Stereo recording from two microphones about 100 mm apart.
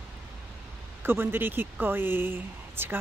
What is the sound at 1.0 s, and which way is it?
Speech, 20° right (ahead or behind).